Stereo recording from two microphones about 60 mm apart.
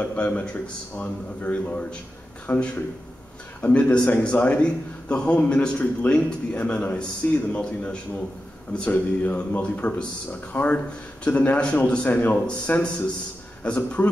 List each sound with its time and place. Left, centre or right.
0.0 s a man's voice: left